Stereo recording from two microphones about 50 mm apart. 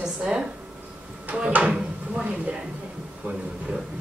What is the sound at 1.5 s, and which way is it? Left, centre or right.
A woman's voice, right.